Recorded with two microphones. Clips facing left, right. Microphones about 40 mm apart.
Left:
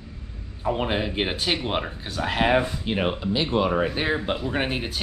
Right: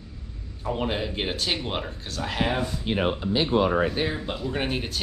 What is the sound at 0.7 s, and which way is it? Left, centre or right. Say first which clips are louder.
Speech: left 3 dB; centre.